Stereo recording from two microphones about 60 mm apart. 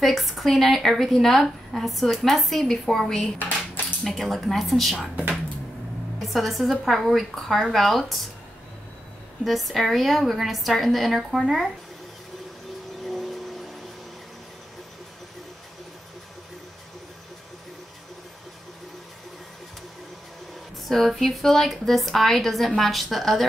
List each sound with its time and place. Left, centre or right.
0.0 s a woman's voice: centre
3.3 s cutlery: left
4.0 s a woman's voice: centre
6.1 s a woman's voice: centre
9.4 s a woman's voice: centre
11.4 s speech: centre
13.0 s vehicle: centre
20.9 s a woman's voice: centre